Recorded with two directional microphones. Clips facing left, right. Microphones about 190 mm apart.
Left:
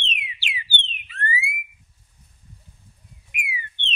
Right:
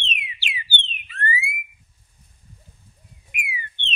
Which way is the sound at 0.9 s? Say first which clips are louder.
Right 2 dB; 50° right (ahead or behind).